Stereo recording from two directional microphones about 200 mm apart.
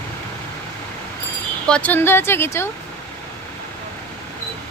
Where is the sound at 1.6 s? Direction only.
5° left (ahead or behind).